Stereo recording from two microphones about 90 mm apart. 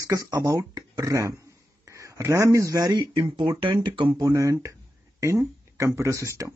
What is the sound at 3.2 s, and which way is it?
Speech, 65° right (ahead or behind).